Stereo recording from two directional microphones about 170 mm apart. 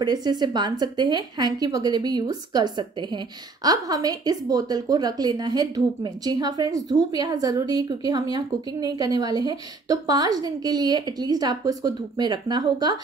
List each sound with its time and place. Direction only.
0.0 s a woman's voice: 25° right (ahead or behind)